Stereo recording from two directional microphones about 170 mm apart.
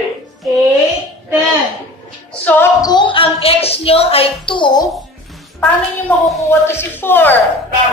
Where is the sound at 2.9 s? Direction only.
30° left (ahead or behind).